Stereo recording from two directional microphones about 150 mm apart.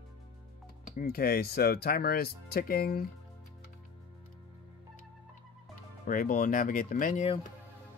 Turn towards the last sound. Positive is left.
turn(degrees=65)  # may be behind; listen again after turning